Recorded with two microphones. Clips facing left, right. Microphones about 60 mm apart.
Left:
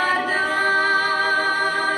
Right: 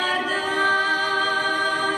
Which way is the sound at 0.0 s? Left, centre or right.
Left.